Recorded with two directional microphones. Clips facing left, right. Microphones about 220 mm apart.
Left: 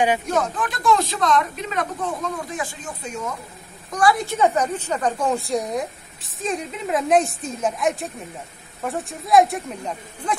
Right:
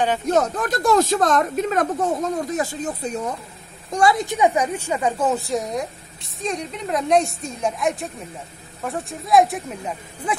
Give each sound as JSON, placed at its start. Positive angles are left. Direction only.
{"t": 0.3, "sound": "speech", "side_deg": -40}
{"t": 3.9, "sound": "a woman's voice", "side_deg": -25}